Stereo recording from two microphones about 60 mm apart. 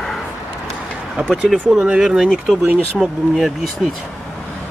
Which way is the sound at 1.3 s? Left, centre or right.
Centre.